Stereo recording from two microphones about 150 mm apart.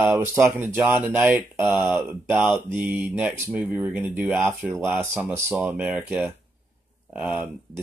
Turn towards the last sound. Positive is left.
turn(degrees=-5)  # may be behind; listen again after turning